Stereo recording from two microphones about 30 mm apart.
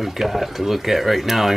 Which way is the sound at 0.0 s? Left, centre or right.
Centre.